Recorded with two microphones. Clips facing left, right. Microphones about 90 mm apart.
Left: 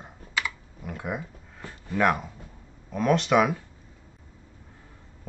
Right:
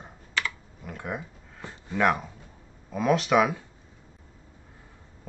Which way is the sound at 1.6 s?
20° right (ahead or behind).